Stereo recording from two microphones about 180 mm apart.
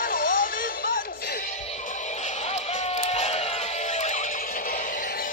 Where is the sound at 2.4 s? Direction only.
40° left (ahead or behind).